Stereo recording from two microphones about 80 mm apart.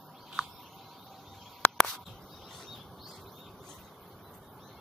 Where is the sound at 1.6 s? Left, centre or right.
Centre.